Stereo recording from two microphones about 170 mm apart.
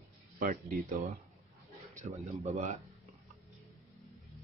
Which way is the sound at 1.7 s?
40° right (ahead or behind).